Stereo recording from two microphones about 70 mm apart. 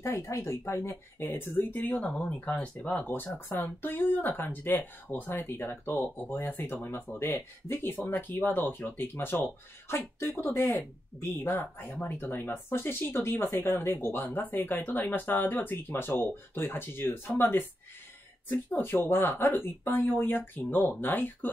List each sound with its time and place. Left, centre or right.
0.0 s speech: left
11.4 s speech: left